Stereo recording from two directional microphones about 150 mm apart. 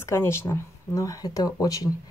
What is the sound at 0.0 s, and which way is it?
Speech, 15° left (ahead or behind).